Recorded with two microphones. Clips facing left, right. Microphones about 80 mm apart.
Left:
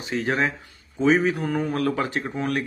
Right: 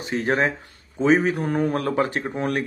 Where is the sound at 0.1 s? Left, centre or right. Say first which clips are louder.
Right 2 dB; right.